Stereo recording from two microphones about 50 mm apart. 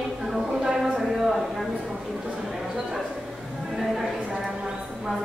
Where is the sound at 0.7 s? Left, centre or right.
Centre.